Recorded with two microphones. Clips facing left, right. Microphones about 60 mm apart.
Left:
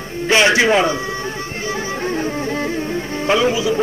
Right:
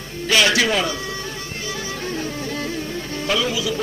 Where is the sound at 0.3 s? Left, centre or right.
Left.